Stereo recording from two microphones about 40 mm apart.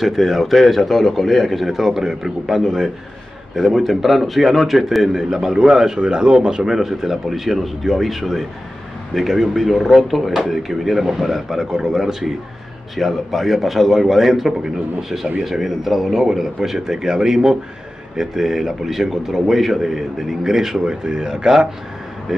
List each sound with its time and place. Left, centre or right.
0.0 s speech: centre; by 6.7 s right
6.7 s a man's voice: centre